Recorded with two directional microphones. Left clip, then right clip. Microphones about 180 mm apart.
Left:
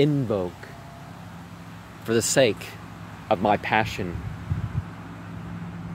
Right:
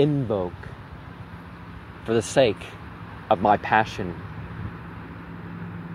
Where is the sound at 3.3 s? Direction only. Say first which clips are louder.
Right 2 dB; centre (ahead or behind).